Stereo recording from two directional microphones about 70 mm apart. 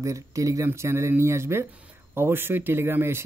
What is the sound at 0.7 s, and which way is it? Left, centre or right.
Speech, right.